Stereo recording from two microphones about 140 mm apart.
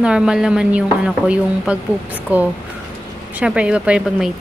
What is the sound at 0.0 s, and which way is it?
Speech, 5° right (ahead or behind).